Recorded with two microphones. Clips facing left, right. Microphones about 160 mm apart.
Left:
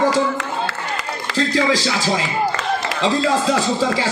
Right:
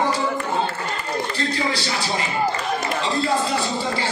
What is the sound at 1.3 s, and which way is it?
Speech, 90° left.